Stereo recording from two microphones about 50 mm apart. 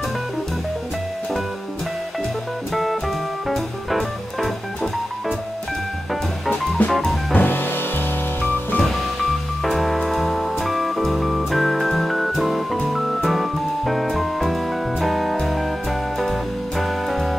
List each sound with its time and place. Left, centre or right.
2.7 s music: centre
6.8 s music: left
9.6 s music: centre